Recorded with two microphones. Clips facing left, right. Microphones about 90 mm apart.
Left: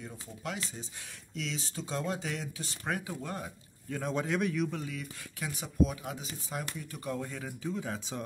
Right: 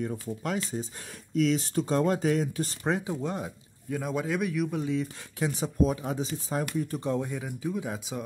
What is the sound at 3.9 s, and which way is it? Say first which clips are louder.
Speech: right 3 dB; 5° right (ahead or behind).